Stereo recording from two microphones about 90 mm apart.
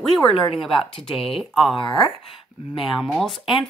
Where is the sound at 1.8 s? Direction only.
60° left (ahead or behind).